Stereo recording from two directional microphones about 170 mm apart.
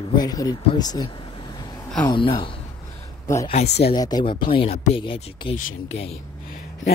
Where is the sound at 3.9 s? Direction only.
25° left (ahead or behind).